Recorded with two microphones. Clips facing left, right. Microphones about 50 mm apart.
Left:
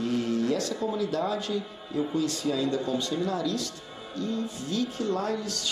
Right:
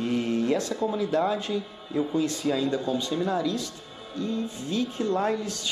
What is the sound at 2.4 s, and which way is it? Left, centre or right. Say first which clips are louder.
Speech: right 1 dB; centre.